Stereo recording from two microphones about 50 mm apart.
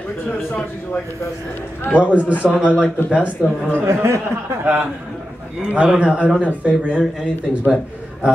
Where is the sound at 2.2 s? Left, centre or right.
Right.